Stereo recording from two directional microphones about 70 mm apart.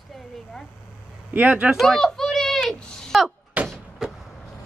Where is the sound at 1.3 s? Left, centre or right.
Right.